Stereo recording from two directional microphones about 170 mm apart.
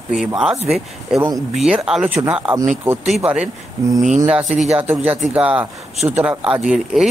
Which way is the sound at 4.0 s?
45° right (ahead or behind).